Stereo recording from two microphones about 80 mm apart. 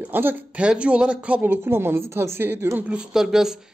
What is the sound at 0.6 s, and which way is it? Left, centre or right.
Speech, centre.